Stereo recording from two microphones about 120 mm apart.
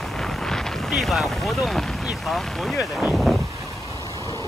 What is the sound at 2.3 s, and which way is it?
Speech, centre (ahead or behind).